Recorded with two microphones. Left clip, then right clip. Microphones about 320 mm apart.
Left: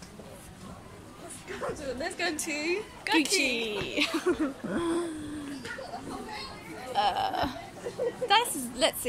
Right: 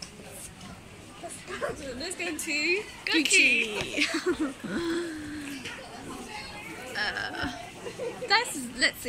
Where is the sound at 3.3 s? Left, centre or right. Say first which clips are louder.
Right 6 dB; centre.